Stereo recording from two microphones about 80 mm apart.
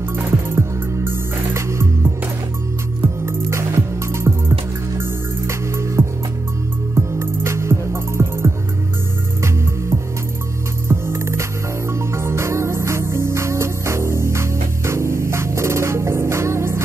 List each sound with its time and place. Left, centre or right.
0.1 s music: right
10.9 s music: right